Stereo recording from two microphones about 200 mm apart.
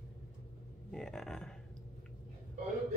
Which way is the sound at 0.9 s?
Centre (ahead or behind).